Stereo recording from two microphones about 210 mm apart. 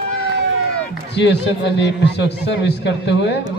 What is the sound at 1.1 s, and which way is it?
A man's voice, 55° left (ahead or behind).